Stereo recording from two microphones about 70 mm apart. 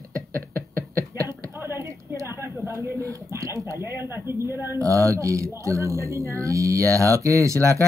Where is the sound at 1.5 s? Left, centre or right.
Right.